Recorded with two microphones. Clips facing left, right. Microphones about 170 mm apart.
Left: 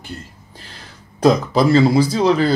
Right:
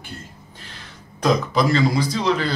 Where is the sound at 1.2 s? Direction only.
30° left (ahead or behind).